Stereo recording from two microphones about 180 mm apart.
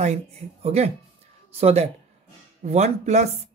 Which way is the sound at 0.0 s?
35° right (ahead or behind).